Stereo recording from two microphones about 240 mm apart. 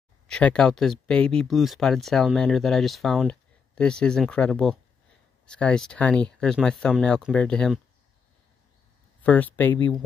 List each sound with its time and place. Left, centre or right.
0.3 s speech: centre
9.2 s speech: centre